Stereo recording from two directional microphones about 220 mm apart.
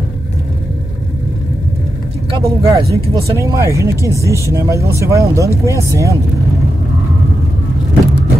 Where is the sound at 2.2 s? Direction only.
20° right (ahead or behind).